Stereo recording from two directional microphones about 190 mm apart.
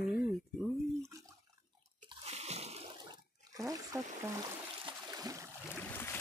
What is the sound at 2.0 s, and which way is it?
Water, 35° right (ahead or behind).